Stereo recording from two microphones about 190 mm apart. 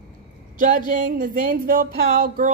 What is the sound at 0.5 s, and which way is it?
A woman's voice, 45° right (ahead or behind).